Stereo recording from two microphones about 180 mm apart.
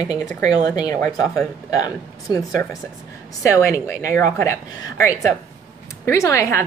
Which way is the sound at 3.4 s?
15° left (ahead or behind).